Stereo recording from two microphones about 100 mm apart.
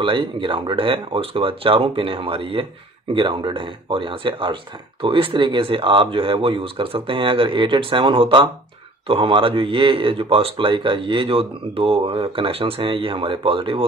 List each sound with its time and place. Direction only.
0.0 s speech: 60° right (ahead or behind)